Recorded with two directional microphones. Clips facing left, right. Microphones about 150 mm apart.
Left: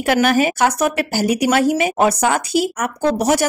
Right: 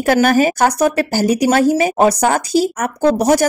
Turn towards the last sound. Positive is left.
turn(degrees=-40)  # may be behind; listen again after turning